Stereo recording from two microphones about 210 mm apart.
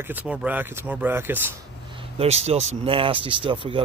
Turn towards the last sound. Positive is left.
turn(degrees=-25)  # may be behind; listen again after turning